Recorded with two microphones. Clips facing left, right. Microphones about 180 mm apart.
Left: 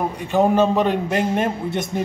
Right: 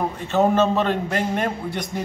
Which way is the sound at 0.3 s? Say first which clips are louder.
Left 2 dB; 15° left (ahead or behind).